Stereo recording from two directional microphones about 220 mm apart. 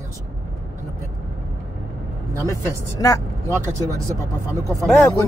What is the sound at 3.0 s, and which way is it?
Speech, 15° left (ahead or behind).